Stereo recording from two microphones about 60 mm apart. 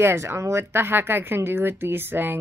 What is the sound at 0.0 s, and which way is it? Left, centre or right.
Speech, right.